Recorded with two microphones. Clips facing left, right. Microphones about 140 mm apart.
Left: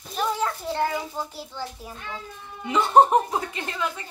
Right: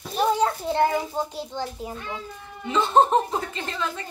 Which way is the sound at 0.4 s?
20° right (ahead or behind).